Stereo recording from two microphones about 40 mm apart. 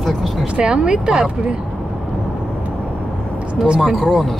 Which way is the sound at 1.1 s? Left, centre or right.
Centre.